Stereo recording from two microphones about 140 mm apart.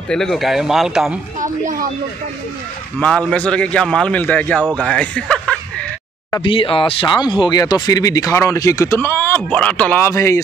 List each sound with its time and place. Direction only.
0.1 s speech: 5° left (ahead or behind)
1.4 s speech: 65° right (ahead or behind)
3.0 s a man's voice: 10° left (ahead or behind)
6.4 s speech: 40° left (ahead or behind); by 10.4 s 20° left (ahead or behind)